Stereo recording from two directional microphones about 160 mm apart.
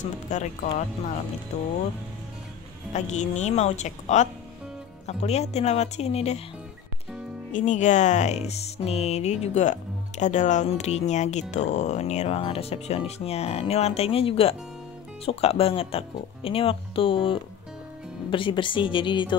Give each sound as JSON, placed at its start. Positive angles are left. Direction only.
{"t": 0.0, "sound": "speech", "side_deg": 50}
{"t": 2.9, "sound": "speech", "side_deg": 45}
{"t": 7.5, "sound": "speech", "side_deg": 50}